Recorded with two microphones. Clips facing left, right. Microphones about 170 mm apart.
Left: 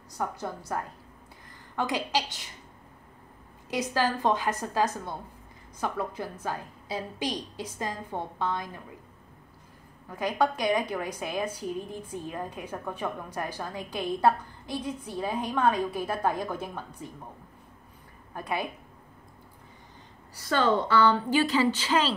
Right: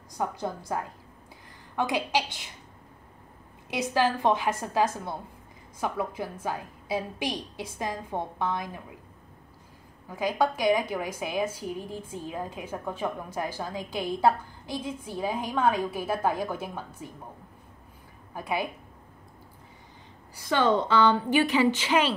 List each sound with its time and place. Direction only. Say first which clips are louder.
0.2 s a woman's voice: right 2 dB; 15° right (ahead or behind)
3.7 s a woman's voice: right 2 dB; 10° right (ahead or behind)
10.0 s a woman's voice: right 1 dB; 10° right (ahead or behind)
18.3 s a woman's voice: right 2 dB; 5° right (ahead or behind)
20.3 s a woman's voice: right 1 dB; 15° right (ahead or behind)